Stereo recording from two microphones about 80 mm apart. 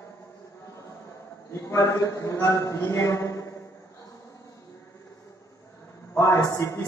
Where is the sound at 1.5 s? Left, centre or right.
Left.